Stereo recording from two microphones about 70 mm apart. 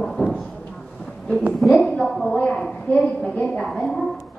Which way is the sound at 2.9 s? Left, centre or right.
Left.